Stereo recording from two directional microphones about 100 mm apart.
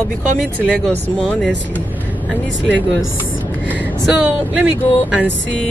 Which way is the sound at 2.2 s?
15° left (ahead or behind).